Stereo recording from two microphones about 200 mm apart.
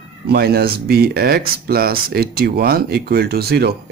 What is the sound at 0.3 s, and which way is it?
Speech, 50° right (ahead or behind).